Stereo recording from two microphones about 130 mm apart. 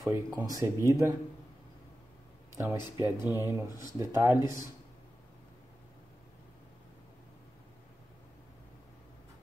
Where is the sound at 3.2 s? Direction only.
20° right (ahead or behind).